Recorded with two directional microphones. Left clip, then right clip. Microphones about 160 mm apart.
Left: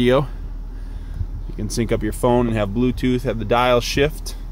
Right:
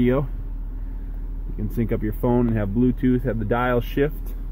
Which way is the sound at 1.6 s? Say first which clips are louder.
Left 4 dB; 30° left (ahead or behind).